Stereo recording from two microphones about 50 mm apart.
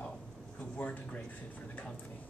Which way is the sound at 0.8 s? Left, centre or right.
Left.